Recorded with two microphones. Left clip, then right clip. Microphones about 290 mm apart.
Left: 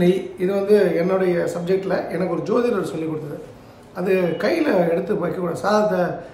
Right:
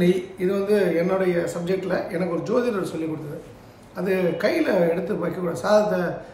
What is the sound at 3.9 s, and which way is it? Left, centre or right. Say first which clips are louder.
A woman's voice: left 3 dB; centre.